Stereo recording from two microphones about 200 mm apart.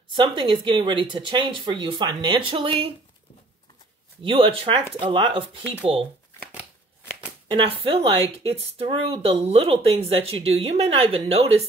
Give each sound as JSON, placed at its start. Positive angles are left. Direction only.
{"t": 0.1, "sound": "speech", "side_deg": -25}
{"t": 4.2, "sound": "speech", "side_deg": -25}
{"t": 7.5, "sound": "speech", "side_deg": -25}